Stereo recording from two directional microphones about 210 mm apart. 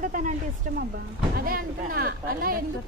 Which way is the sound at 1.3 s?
45° right (ahead or behind).